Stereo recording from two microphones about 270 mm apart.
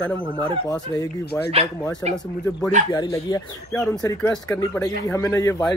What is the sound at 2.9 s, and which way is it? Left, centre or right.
Speech, centre.